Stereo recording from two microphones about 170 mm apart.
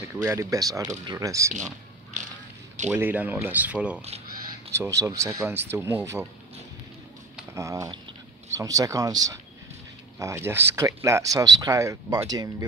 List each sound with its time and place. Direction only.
0.1 s speech: 15° right (ahead or behind)
2.1 s a sound: 45° right (ahead or behind)
2.9 s speech: 10° right (ahead or behind)
7.5 s speech: 20° right (ahead or behind)